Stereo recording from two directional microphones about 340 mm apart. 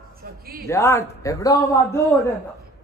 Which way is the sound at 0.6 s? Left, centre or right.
Centre.